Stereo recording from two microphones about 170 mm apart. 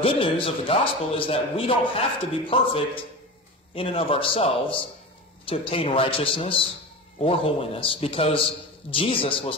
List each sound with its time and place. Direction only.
0.0 s a man's voice: 30° left (ahead or behind)